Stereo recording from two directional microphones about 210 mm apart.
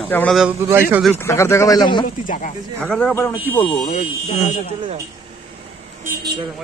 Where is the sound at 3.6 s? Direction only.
25° left (ahead or behind).